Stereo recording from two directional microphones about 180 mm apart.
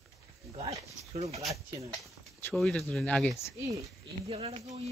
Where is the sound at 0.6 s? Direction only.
35° right (ahead or behind).